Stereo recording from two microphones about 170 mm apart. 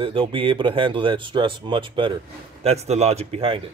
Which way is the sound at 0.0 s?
30° right (ahead or behind).